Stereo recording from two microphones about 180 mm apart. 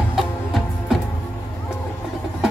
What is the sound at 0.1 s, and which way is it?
Music, centre (ahead or behind).